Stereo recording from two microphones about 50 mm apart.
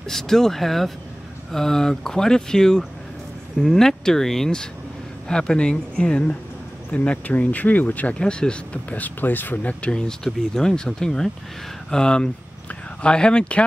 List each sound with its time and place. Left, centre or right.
0.1 s speech: centre; by 8.2 s left
8.2 s speech: centre
8.9 s speech: left